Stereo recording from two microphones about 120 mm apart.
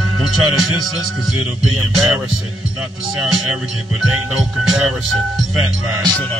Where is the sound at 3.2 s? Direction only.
5° right (ahead or behind).